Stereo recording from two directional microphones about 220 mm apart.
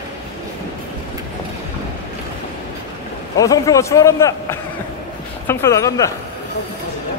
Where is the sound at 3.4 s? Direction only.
15° left (ahead or behind).